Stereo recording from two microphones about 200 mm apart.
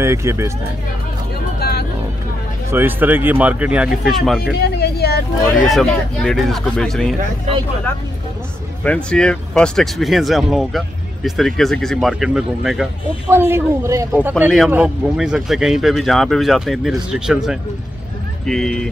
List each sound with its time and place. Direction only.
0.0 s speech: 15° right (ahead or behind)
1.6 s music: 50° left (ahead or behind)
2.7 s speech: 10° right (ahead or behind)
4.7 s a sound: 50° left (ahead or behind)
5.7 s speech: centre (ahead or behind)
8.8 s speech: 5° left (ahead or behind)
13.3 s speech: 10° right (ahead or behind)